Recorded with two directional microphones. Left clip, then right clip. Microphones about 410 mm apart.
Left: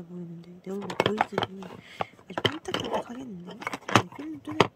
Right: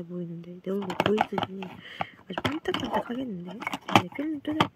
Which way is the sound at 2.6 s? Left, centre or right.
Centre.